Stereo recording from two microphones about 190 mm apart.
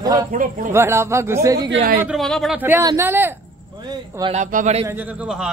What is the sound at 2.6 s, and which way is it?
Speech, 15° right (ahead or behind).